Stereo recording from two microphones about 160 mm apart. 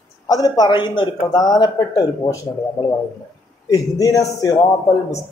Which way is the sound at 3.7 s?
20° left (ahead or behind).